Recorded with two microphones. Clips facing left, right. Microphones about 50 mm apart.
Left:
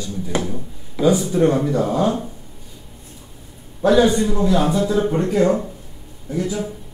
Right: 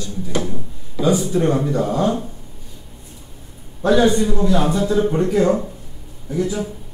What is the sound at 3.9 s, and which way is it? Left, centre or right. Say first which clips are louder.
Speech: even; centre.